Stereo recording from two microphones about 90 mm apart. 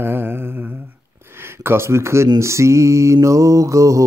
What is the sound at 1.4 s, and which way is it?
Speech, 25° right (ahead or behind).